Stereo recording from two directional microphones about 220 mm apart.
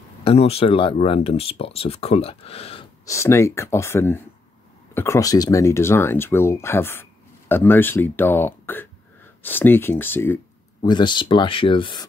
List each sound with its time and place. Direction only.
0.2 s speech: 25° left (ahead or behind)
3.1 s speech: 15° left (ahead or behind)